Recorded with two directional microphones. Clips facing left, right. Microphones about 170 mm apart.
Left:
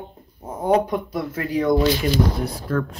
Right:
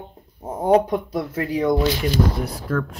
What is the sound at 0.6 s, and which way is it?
Speech, 25° right (ahead or behind).